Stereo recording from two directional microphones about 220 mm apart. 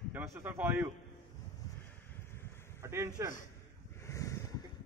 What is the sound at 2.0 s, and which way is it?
Vehicle, 10° left (ahead or behind).